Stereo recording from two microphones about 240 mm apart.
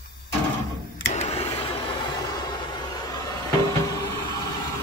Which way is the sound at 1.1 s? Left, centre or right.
Left.